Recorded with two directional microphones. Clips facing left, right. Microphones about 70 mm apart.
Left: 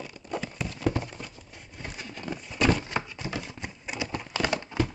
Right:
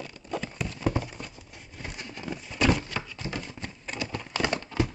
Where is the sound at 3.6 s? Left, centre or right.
Centre.